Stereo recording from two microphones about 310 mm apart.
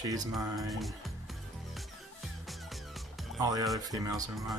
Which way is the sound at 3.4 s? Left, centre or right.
Centre.